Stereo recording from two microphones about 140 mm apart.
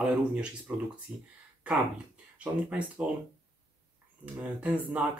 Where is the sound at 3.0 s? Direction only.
10° right (ahead or behind).